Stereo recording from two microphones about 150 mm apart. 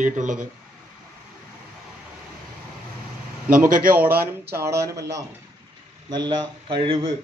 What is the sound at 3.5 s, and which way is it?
Speech, 70° right (ahead or behind).